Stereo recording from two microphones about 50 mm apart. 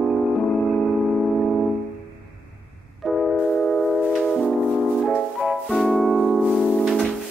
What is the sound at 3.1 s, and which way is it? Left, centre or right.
Organ, centre.